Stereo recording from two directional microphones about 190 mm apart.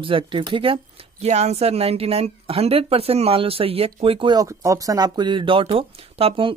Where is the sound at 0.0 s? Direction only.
25° right (ahead or behind).